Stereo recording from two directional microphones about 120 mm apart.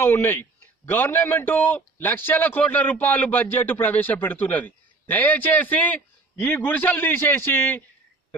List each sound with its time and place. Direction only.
0.0 s a man's voice: 20° left (ahead or behind)